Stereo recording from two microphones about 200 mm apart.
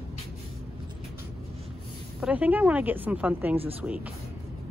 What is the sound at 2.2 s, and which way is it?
Speech, 10° right (ahead or behind).